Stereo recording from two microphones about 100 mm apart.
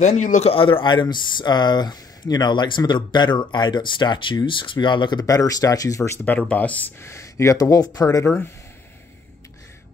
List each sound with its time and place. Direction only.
0.0 s speech: 85° left; by 5.2 s 50° left (ahead or behind)
5.2 s speech: 35° left (ahead or behind)
6.5 s speech: 15° left (ahead or behind)
7.0 s speech: 30° left (ahead or behind)